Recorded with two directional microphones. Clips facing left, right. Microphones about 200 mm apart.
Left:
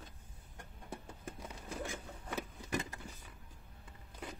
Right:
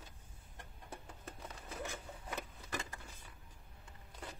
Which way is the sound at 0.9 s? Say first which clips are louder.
Left 4 dB; 10° left (ahead or behind).